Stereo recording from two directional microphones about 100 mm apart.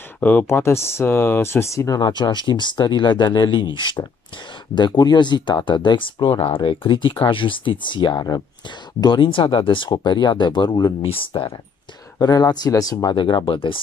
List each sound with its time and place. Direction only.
0.2 s speech: 15° left (ahead or behind)
2.0 s speech: 45° left (ahead or behind); by 11.5 s 65° left (ahead or behind)
12.2 s speech: 40° left (ahead or behind)
13.1 s speech: 55° left (ahead or behind)